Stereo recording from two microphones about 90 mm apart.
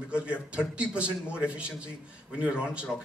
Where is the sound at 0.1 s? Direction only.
15° right (ahead or behind).